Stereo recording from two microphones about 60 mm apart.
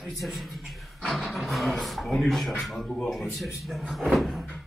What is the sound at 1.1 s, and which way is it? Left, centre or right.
Speech, centre.